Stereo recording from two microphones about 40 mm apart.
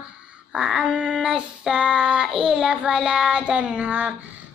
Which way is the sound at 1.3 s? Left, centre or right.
Right.